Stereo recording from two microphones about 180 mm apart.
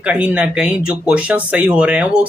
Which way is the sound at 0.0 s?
5° right (ahead or behind).